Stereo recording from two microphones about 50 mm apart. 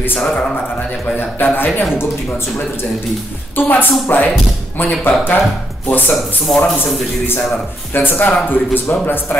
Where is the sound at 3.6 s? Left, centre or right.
Left.